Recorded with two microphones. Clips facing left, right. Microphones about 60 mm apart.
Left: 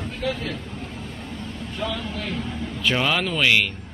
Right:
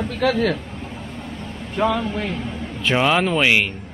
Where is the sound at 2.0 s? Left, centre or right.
Right.